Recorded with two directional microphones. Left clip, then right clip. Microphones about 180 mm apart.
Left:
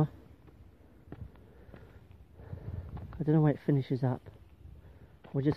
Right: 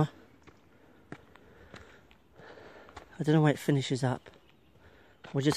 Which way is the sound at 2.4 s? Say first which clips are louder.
Right 3 dB; 25° right (ahead or behind).